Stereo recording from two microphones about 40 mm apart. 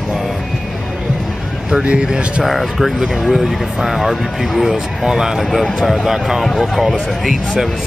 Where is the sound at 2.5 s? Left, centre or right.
Centre.